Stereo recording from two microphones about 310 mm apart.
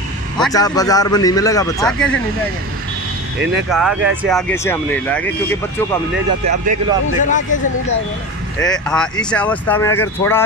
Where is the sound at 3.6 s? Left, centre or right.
Centre.